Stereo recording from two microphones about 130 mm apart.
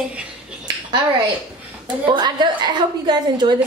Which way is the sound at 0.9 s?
35° right (ahead or behind).